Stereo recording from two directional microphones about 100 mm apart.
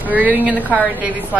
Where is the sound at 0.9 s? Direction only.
15° right (ahead or behind).